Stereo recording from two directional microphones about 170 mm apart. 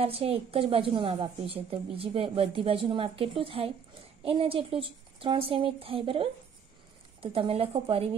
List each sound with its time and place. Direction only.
0.0 s a woman's voice: 35° right (ahead or behind)